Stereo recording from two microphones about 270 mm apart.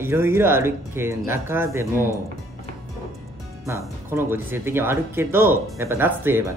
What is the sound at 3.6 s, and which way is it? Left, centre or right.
A woman's voice, centre.